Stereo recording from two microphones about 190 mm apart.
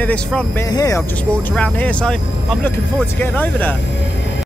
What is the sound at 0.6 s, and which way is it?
Speech, 20° left (ahead or behind).